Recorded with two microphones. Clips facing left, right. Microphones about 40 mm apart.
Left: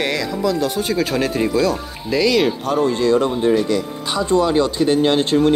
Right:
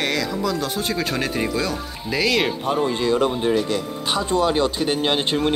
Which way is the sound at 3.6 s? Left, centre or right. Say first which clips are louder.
Left 3 dB; right.